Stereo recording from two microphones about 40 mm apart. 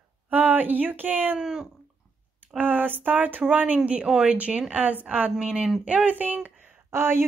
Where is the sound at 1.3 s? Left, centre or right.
Centre.